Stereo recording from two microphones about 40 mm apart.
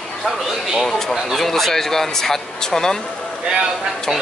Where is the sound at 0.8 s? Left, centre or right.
Centre.